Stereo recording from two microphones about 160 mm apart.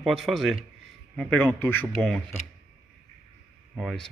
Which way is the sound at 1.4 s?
15° left (ahead or behind).